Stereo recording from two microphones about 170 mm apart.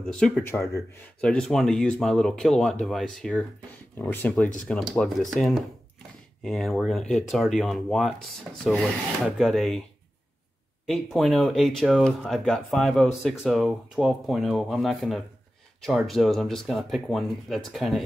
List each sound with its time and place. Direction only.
0.0 s speech: 5° left (ahead or behind)
10.9 s speech: centre (ahead or behind)